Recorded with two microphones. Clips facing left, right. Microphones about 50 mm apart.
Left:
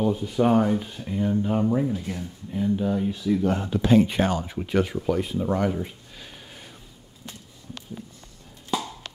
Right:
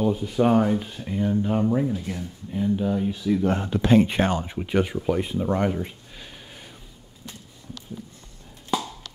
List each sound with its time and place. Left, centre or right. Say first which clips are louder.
0.0 s speech: right 1 dB; centre
3.1 s speech: right 1 dB; right
3.4 s speech: right 1 dB; right
4.6 s speech: even; centre
6.1 s a sound: right 1 dB; centre
9.0 s clip-clop: left 3 dB; left